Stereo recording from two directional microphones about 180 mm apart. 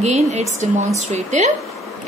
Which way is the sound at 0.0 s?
40° right (ahead or behind).